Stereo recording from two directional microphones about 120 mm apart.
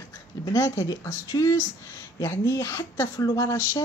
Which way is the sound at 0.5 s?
25° left (ahead or behind).